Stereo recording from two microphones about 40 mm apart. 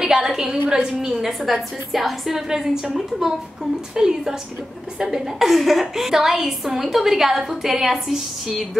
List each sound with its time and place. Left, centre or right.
0.0 s a woman's voice: centre